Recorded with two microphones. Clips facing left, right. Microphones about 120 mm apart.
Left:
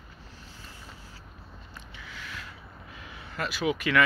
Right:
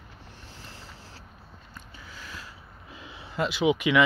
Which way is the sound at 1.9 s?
35° right (ahead or behind).